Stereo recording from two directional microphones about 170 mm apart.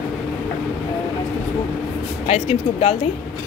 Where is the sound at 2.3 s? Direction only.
35° left (ahead or behind).